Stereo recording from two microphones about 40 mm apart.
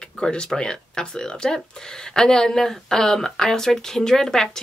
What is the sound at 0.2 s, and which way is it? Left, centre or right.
Speech, left.